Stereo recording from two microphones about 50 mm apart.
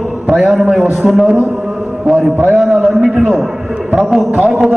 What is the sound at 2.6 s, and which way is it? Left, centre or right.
A man's voice, centre.